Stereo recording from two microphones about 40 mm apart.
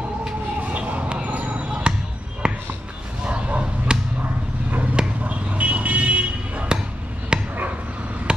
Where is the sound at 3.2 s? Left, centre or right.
Right.